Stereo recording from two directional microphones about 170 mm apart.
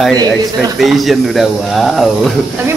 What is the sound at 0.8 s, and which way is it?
Speech, centre (ahead or behind).